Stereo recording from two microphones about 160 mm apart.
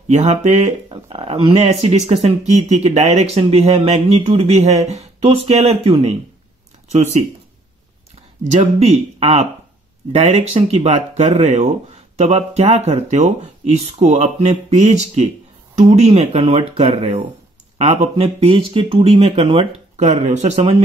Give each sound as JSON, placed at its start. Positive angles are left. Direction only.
{"t": 0.1, "sound": "speech", "side_deg": -45}
{"t": 0.8, "sound": "speech", "side_deg": -30}
{"t": 8.5, "sound": "speech", "side_deg": -40}